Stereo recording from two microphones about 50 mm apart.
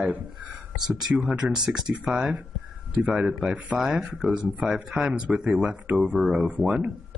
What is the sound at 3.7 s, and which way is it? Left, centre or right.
Speech, centre.